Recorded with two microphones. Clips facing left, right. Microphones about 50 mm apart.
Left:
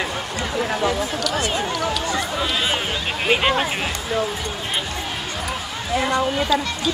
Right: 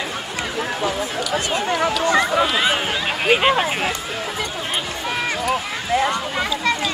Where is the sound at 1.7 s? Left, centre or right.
Right.